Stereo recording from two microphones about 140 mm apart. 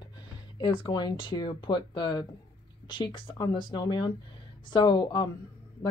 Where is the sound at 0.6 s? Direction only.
30° left (ahead or behind).